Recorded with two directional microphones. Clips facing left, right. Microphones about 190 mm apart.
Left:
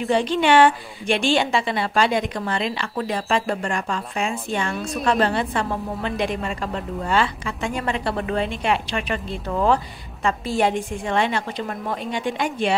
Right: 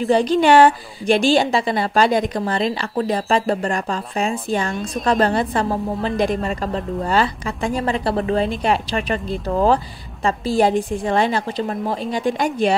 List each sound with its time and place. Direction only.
0.1 s a woman's voice: 40° right (ahead or behind)